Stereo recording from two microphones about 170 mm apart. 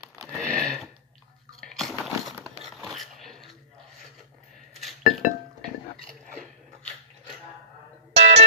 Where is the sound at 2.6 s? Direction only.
Centre (ahead or behind).